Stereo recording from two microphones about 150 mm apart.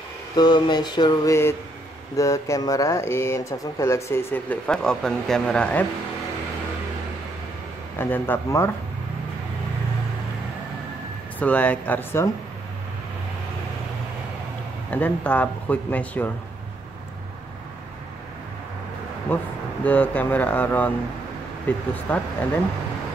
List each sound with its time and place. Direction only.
0.4 s mantra: 30° left (ahead or behind)
2.1 s speech: 20° left (ahead or behind)
8.0 s speech: 15° left (ahead or behind)
11.3 s speech: 10° left (ahead or behind)
14.9 s speech: 10° left (ahead or behind)
19.3 s speech: 15° left (ahead or behind)